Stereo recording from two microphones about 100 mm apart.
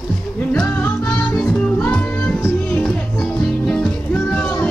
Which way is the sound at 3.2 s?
5° left (ahead or behind).